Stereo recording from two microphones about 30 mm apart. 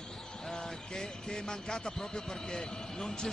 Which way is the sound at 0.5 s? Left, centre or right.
Left.